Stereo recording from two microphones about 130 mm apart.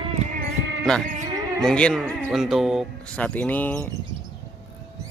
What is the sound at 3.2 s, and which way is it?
Speech, 10° left (ahead or behind).